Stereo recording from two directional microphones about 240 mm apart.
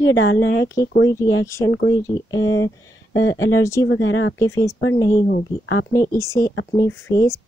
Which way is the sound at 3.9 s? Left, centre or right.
Left.